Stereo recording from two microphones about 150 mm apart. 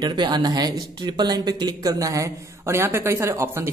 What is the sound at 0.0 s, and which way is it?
Speech, 30° right (ahead or behind).